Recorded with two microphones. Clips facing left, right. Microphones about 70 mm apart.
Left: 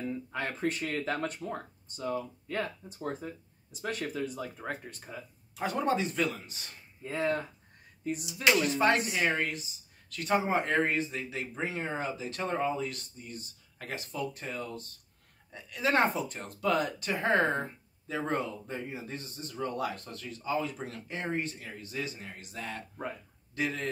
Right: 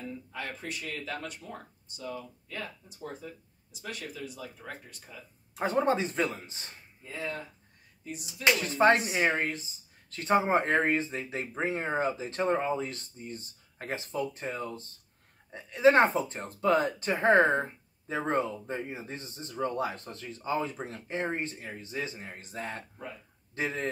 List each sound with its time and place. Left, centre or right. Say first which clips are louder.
0.3 s speech: left 7 dB; left
5.6 s speech: right 3 dB; right
7.0 s speech: left 6 dB; left
8.6 s speech: right 3 dB; right